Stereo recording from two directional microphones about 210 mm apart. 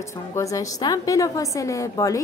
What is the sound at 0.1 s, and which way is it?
A woman's voice, 15° left (ahead or behind).